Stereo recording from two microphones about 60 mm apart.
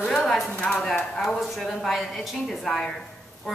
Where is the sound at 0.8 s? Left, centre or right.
Centre.